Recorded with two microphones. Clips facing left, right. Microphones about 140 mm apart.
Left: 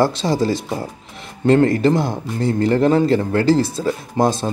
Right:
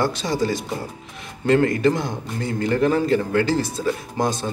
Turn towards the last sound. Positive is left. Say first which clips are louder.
# left 5 dB
turn(degrees=30)  # may be behind; listen again after turning